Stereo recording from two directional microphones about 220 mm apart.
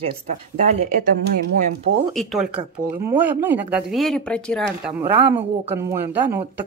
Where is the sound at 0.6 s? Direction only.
35° right (ahead or behind).